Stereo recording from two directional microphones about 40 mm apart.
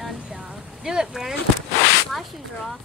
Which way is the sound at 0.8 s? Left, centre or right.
Centre.